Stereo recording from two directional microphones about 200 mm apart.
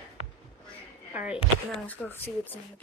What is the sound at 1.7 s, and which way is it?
Speech, 10° left (ahead or behind).